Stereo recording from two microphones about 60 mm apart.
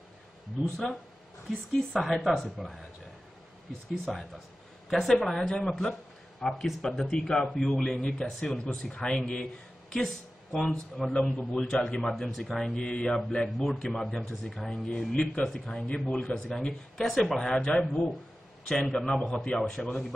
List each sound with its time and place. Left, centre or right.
1.5 s a man's voice: centre
3.9 s a man's voice: centre
11.7 s a man's voice: centre
12.0 s speech: centre
12.8 s a man's voice: centre